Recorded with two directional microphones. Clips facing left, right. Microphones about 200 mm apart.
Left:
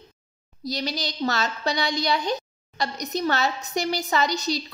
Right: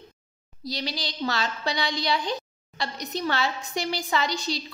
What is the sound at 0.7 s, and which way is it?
A woman's voice, 45° left (ahead or behind).